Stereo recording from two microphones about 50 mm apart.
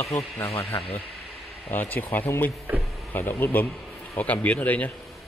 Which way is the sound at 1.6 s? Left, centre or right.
Left.